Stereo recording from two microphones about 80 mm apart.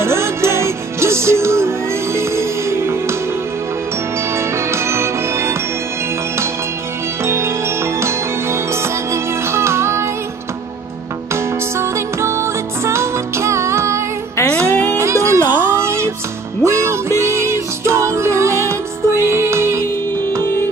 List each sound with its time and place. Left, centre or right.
0.0 s music: right
4.6 s music: right
7.2 s music: right
11.8 s music: right
14.7 s music: centre
15.0 s music: right
15.5 s a sound: right
16.6 s music: right